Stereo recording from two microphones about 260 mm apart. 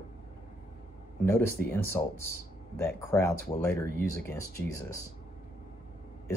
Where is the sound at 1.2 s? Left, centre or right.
Centre.